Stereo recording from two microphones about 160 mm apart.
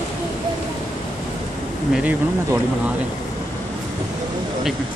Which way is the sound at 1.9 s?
10° right (ahead or behind).